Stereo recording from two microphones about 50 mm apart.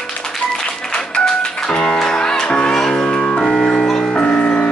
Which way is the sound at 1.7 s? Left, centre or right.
Centre.